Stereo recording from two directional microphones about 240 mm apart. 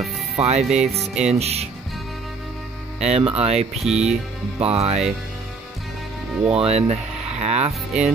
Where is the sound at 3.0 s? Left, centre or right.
Right.